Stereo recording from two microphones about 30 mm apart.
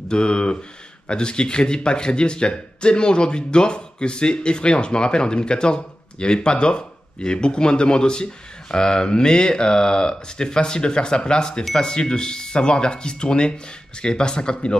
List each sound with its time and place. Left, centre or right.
0.1 s speech: left